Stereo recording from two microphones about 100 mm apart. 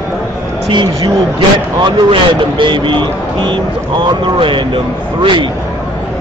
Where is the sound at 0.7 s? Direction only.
50° right (ahead or behind).